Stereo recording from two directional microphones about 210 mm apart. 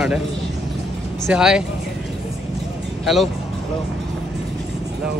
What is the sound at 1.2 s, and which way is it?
Speech, 5° right (ahead or behind).